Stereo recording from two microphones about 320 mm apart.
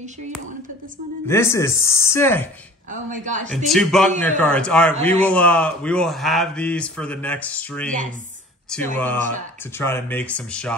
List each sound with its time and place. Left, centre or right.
1.2 s speech: centre
2.9 s speech: right
3.6 s a man's voice: centre